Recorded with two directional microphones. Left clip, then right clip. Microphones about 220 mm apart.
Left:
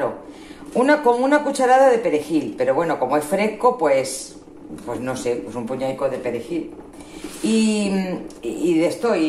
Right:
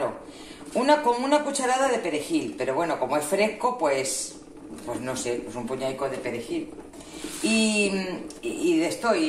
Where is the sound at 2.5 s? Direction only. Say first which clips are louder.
Left 8 dB; 20° left (ahead or behind).